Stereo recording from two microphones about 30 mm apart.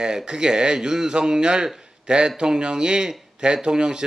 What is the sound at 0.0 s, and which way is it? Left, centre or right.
Speech, right.